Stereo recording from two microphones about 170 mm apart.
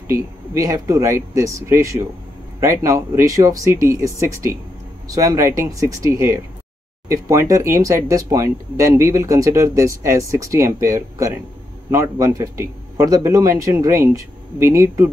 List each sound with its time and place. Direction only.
0.1 s speech: 20° right (ahead or behind)